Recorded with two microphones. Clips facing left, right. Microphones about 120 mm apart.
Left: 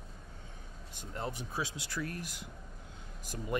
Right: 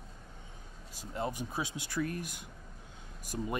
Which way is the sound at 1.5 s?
15° right (ahead or behind).